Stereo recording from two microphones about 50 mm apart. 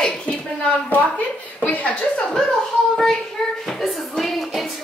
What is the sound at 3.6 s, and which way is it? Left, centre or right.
Speech, centre.